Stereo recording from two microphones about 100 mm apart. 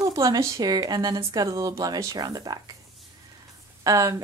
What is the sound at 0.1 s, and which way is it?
Speech, 35° right (ahead or behind).